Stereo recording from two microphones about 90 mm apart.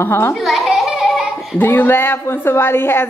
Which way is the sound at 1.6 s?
25° left (ahead or behind).